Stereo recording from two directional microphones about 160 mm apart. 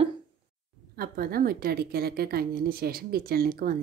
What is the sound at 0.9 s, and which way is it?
A woman's voice, 70° right (ahead or behind).